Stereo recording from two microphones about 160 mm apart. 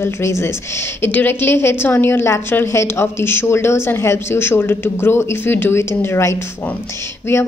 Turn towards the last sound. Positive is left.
turn(degrees=15)  # may be behind; listen again after turning